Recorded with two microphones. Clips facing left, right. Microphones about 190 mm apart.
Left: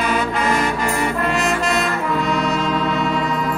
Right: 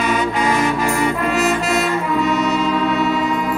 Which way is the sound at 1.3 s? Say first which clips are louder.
Right 2 dB; 5° right (ahead or behind).